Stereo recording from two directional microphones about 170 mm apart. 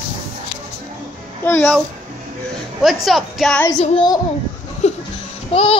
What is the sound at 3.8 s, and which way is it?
Speech, 35° left (ahead or behind).